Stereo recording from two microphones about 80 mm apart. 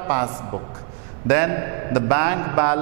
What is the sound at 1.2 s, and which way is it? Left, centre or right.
Mantra, centre.